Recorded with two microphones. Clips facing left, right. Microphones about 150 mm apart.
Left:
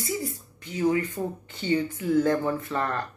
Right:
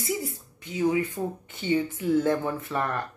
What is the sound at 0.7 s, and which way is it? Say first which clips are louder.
Speech: even; 15° right (ahead or behind).